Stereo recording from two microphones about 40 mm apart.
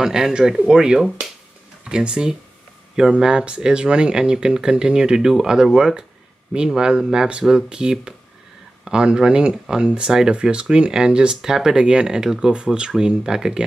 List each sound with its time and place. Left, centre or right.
0.0 s speech: centre